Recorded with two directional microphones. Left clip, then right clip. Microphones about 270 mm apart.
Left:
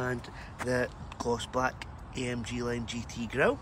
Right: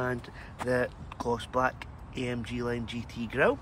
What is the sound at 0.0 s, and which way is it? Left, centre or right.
Speech, centre.